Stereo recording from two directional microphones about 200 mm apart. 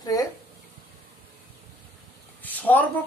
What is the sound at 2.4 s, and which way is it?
Speech, 10° left (ahead or behind).